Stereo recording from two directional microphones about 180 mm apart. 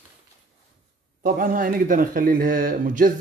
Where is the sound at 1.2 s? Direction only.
50° right (ahead or behind).